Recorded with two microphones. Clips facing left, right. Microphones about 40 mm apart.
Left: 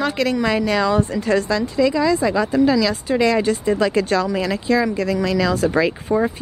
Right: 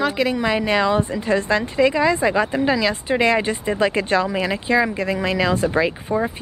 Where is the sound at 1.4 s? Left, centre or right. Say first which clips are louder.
Even; right.